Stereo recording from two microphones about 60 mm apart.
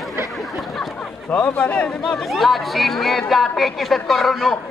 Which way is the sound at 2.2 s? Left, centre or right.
Centre.